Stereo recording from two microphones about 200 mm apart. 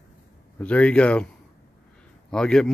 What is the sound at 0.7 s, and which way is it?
Speech, 5° left (ahead or behind).